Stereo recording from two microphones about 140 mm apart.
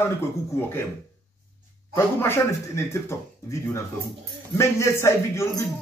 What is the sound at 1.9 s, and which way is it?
Speech, 15° left (ahead or behind).